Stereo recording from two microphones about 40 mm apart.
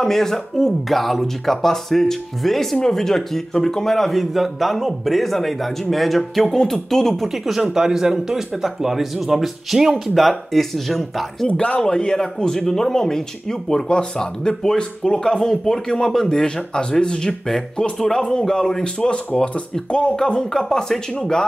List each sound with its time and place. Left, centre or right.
0.0 s speech: centre
7.2 s speech: centre
11.8 s speech: centre